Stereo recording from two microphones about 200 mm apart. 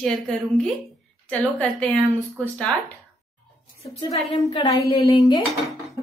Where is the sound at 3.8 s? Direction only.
25° left (ahead or behind).